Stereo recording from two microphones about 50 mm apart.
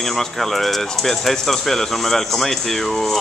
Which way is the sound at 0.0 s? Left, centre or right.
Centre.